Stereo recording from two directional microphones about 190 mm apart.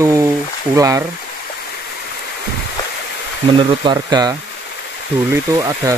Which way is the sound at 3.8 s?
20° right (ahead or behind).